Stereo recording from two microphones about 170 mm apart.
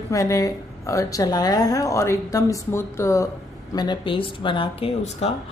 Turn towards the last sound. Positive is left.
turn(degrees=30)  # may be behind; listen again after turning